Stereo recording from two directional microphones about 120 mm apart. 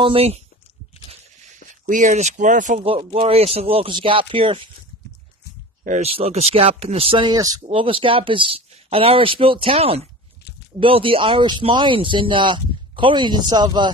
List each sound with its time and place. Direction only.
0.0 s speech: 55° right (ahead or behind)
1.9 s speech: 85° right
2.8 s speech: 50° right (ahead or behind)
5.9 s speech: 65° right (ahead or behind)
7.2 s speech: 30° right (ahead or behind)
7.6 s speech: 45° right (ahead or behind)